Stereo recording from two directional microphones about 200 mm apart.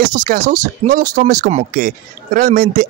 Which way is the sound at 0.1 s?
40° right (ahead or behind).